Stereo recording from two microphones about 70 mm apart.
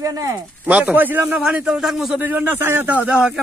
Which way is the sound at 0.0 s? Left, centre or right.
Right.